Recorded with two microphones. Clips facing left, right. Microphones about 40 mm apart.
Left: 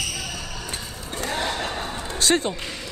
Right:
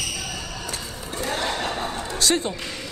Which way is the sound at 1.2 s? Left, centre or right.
Centre.